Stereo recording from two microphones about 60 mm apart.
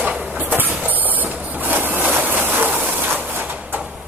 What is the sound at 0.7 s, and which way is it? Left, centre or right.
Vehicle, right.